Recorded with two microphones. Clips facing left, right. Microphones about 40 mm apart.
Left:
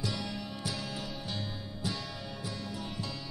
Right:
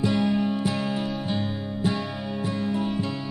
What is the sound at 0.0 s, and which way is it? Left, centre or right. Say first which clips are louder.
Music: right 14 dB; right.